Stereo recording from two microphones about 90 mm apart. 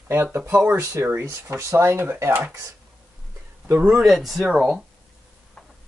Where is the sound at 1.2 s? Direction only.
35° right (ahead or behind).